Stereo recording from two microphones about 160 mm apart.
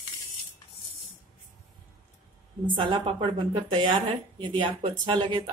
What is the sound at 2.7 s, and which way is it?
A woman's voice, 30° right (ahead or behind).